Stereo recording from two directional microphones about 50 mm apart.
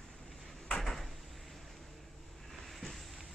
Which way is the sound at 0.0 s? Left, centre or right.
Centre.